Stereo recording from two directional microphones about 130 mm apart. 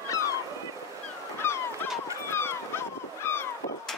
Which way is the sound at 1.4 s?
20° left (ahead or behind).